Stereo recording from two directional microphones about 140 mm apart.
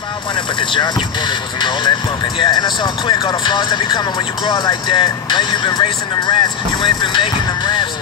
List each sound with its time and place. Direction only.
0.6 s speech: 35° left (ahead or behind)